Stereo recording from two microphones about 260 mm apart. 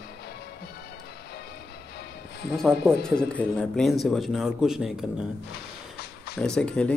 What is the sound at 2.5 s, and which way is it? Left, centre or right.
Speech, centre.